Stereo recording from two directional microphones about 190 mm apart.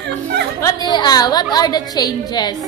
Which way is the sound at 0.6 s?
20° left (ahead or behind).